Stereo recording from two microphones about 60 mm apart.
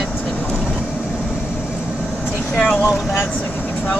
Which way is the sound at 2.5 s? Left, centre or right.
Centre.